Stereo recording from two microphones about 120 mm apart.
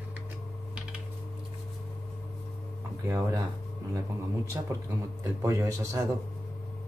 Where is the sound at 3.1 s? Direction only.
25° right (ahead or behind).